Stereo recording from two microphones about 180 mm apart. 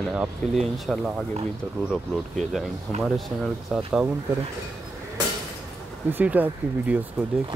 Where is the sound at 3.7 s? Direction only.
Centre (ahead or behind).